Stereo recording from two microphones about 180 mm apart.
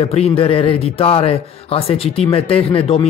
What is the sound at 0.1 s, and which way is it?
Speech, 35° left (ahead or behind).